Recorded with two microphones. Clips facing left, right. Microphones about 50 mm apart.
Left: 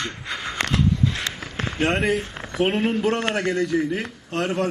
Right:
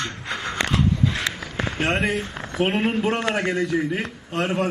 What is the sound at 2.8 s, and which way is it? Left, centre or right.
A man's voice, centre.